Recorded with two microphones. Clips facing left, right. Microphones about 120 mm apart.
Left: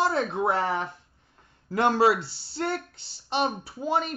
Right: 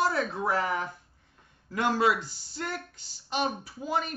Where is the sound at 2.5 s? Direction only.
30° left (ahead or behind).